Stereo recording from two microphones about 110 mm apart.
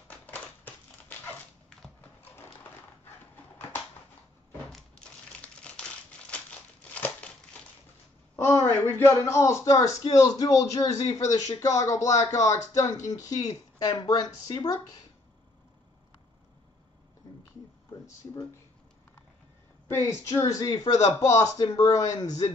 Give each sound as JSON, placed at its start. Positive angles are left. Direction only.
{"t": 4.6, "sound": "crumpling", "side_deg": 10}
{"t": 6.9, "sound": "crumpling", "side_deg": 10}
{"t": 8.5, "sound": "speech", "side_deg": 20}
{"t": 17.2, "sound": "a sound", "side_deg": 30}
{"t": 19.9, "sound": "speech", "side_deg": 30}